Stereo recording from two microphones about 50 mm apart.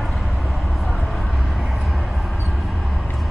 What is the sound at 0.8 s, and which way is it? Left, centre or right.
Vehicle, centre.